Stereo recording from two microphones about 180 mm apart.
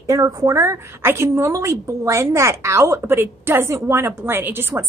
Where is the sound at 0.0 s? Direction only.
20° right (ahead or behind).